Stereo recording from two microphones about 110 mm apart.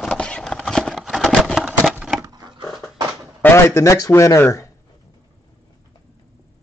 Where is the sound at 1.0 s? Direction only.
Centre (ahead or behind).